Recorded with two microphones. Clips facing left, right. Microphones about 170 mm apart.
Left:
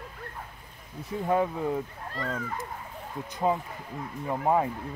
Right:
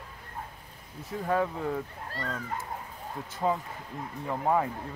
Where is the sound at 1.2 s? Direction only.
20° left (ahead or behind).